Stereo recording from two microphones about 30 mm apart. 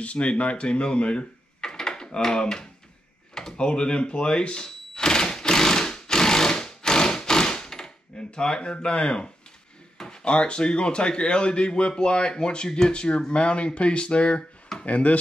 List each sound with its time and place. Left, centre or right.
0.0 s speech: left
1.6 s door: left
3.5 s speech: left
4.6 s sewing machine: left
10.0 s speech: left
12.9 s speech: left
14.9 s speech: left